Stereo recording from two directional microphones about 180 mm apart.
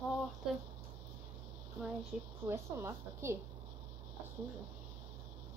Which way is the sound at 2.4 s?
15° right (ahead or behind).